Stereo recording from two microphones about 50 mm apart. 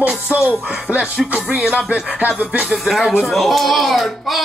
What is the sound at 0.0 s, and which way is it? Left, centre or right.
Music, right.